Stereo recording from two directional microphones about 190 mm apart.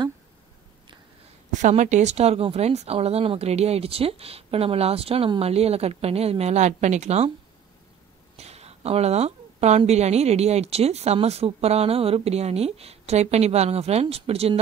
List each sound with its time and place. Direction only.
1.5 s a woman's voice: 40° right (ahead or behind)
8.4 s a woman's voice: 35° right (ahead or behind)